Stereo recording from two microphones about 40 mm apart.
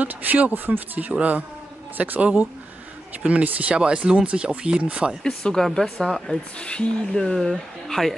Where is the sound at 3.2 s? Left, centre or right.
Right.